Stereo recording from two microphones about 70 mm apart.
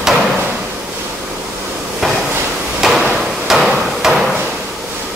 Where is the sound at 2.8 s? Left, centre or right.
Centre.